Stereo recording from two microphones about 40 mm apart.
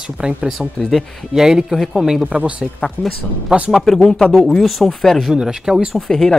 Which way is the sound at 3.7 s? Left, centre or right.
Centre.